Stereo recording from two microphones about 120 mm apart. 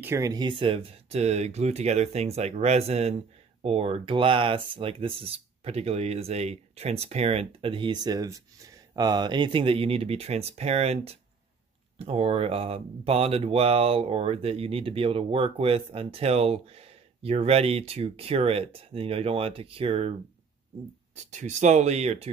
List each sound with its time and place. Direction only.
0.0 s speech: 25° right (ahead or behind); by 20.2 s 55° right (ahead or behind)
21.1 s speech: 85° right; by 22.3 s 65° right (ahead or behind)